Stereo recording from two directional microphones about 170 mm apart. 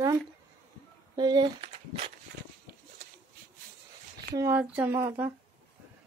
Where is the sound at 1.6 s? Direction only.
40° right (ahead or behind).